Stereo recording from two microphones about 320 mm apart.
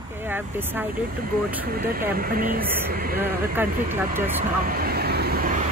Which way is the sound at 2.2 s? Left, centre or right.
Right.